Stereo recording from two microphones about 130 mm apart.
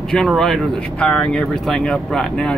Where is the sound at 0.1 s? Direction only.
5° left (ahead or behind).